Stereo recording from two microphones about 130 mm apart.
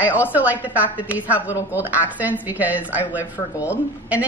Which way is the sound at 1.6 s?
20° left (ahead or behind).